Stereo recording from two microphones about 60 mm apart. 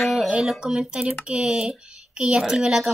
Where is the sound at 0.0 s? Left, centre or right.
Centre.